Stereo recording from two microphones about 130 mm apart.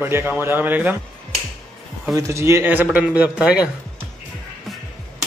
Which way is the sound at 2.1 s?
20° right (ahead or behind).